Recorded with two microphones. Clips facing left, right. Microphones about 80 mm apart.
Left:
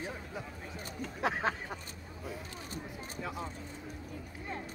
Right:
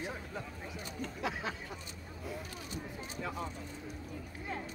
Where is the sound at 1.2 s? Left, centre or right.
Left.